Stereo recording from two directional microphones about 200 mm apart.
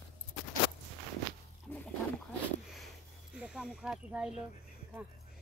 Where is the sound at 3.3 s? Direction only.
5° right (ahead or behind).